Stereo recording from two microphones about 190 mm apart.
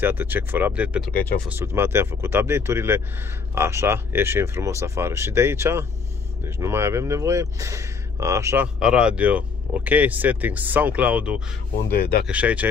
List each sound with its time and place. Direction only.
0.0 s speech: 10° right (ahead or behind)
8.7 s speech: 5° right (ahead or behind)
12.0 s speech: 55° left (ahead or behind)
12.3 s speech: 5° right (ahead or behind)